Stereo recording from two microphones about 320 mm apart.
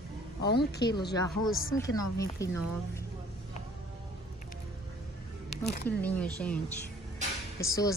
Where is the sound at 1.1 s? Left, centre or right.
Centre.